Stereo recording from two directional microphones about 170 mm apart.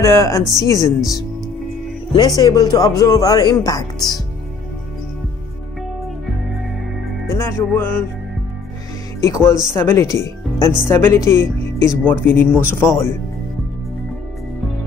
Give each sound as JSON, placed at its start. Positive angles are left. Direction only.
{"t": 0.0, "sound": "speech", "side_deg": 15}
{"t": 7.2, "sound": "music", "side_deg": 15}
{"t": 9.2, "sound": "speech", "side_deg": 20}